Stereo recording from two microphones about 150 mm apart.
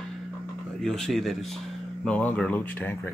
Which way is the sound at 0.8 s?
5° left (ahead or behind).